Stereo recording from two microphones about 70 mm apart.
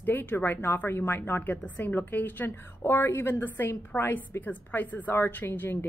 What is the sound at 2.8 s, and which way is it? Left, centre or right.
A woman's voice, left.